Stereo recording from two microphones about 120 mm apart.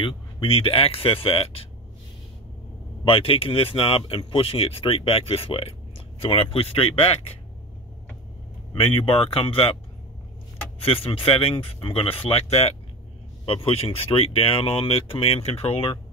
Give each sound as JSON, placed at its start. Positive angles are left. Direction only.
{"t": 0.0, "sound": "speech", "side_deg": 50}
{"t": 3.1, "sound": "speech", "side_deg": 50}
{"t": 8.7, "sound": "speech", "side_deg": 50}
{"t": 10.8, "sound": "speech", "side_deg": 50}
{"t": 13.5, "sound": "speech", "side_deg": 50}